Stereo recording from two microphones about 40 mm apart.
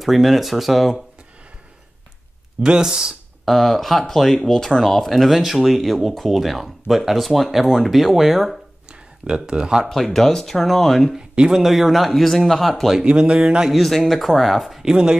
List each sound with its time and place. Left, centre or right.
0.0 s speech: centre
2.6 s speech: centre
3.4 s speech: centre
9.2 s speech: right
9.8 s speech: centre
11.5 s speech: centre
13.0 s speech: right
13.7 s speech: centre